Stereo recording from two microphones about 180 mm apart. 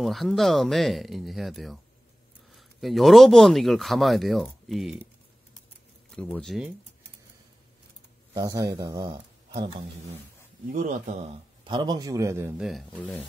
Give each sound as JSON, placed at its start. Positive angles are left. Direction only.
{"t": 0.0, "sound": "a man's voice", "side_deg": 0}
{"t": 6.1, "sound": "a man's voice", "side_deg": 5}
{"t": 8.3, "sound": "speech", "side_deg": -20}
{"t": 10.7, "sound": "a man's voice", "side_deg": -45}
{"t": 11.6, "sound": "a man's voice", "side_deg": -25}